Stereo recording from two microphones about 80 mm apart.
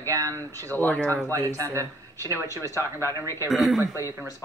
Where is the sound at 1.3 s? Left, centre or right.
Right.